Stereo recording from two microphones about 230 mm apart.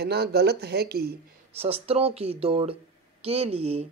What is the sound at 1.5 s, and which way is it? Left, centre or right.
Speech, right.